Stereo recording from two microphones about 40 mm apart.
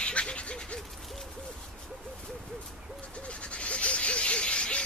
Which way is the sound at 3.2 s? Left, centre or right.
Left.